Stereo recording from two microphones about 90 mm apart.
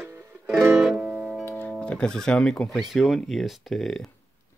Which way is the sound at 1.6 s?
10° left (ahead or behind).